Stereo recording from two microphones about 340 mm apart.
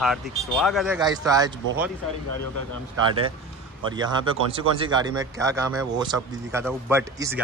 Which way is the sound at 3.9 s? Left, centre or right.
Centre.